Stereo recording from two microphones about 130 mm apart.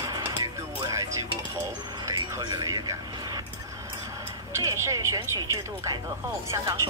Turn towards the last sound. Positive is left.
turn(degrees=-20)  # may be behind; listen again after turning